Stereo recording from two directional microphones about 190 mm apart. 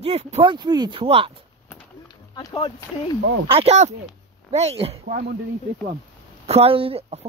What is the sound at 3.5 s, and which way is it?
Speech, 30° right (ahead or behind).